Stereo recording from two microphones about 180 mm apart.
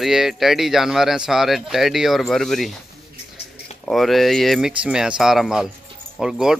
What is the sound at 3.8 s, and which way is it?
Speech, centre (ahead or behind).